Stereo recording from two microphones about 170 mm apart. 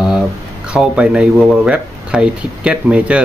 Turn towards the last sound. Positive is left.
turn(degrees=-5)  # may be behind; listen again after turning